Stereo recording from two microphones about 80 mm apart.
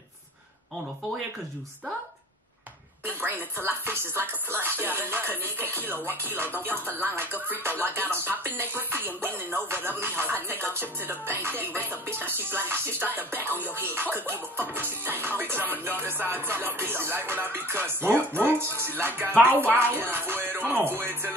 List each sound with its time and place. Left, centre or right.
3.1 s music: right